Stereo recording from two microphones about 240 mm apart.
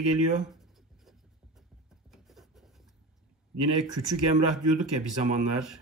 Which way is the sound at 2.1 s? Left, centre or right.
Centre.